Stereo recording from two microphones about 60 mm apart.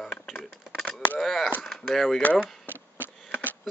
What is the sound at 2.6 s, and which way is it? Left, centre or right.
Sniff, left.